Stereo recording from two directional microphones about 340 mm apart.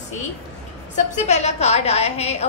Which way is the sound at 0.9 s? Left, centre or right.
Left.